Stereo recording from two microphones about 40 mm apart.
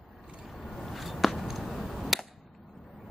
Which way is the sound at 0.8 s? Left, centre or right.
Centre.